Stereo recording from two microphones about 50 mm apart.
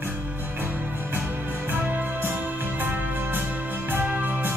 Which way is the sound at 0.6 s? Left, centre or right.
Right.